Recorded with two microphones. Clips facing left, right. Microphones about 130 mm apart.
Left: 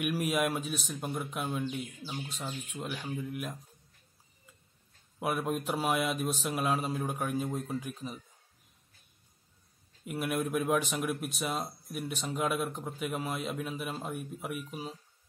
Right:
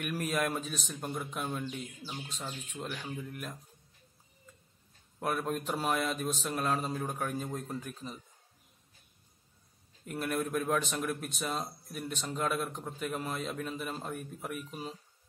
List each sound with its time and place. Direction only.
0.0 s speech: 5° left (ahead or behind)
5.2 s speech: 5° left (ahead or behind)
10.0 s speech: 10° left (ahead or behind)